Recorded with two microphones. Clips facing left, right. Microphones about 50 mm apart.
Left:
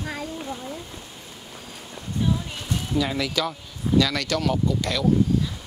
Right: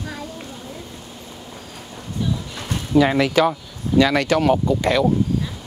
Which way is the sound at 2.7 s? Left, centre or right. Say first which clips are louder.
Right 9 dB; right.